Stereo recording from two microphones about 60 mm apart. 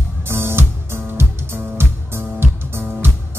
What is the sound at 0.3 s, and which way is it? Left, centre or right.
Music, right.